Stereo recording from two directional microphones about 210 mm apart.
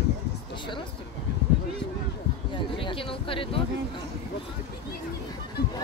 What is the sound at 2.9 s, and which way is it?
Speech, 25° left (ahead or behind).